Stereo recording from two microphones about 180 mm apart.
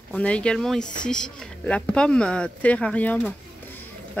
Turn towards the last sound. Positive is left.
turn(degrees=10)  # may be behind; listen again after turning